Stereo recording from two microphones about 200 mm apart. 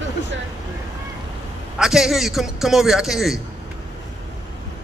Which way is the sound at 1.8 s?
Centre (ahead or behind).